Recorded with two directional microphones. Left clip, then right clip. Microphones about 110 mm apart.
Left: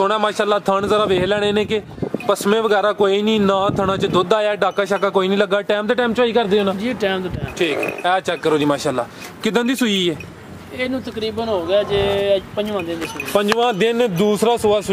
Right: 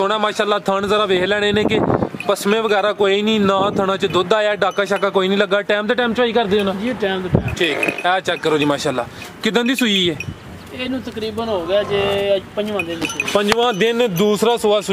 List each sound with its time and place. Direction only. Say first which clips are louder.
0.0 s speech: even; 5° right (ahead or behind)
6.8 s speech: even; 30° left (ahead or behind)
7.5 s speech: even; 5° right (ahead or behind)
11.4 s speech: even; 5° left (ahead or behind)
13.3 s speech: even; 5° right (ahead or behind)